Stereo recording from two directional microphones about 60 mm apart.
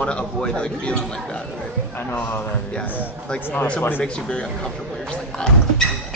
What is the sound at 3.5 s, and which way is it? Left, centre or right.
Speech, centre.